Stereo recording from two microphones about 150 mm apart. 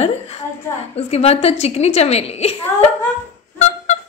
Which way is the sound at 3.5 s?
55° left (ahead or behind).